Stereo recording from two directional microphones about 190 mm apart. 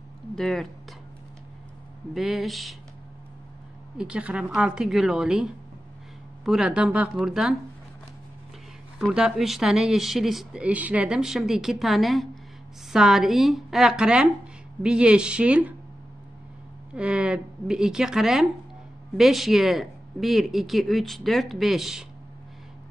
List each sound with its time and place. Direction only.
0.4 s speech: centre (ahead or behind)
2.1 s speech: centre (ahead or behind)
4.0 s speech: 5° right (ahead or behind)
8.9 s speech: 5° right (ahead or behind)
16.9 s speech: 5° right (ahead or behind)